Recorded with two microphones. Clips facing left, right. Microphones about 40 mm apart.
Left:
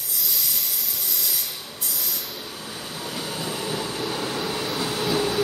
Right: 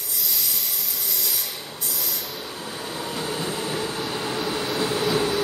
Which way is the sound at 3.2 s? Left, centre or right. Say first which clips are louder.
Right 1 dB; right.